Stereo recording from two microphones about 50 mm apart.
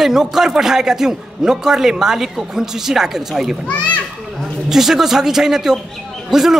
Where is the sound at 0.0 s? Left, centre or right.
Centre.